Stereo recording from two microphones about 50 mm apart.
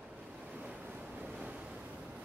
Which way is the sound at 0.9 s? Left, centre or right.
Right.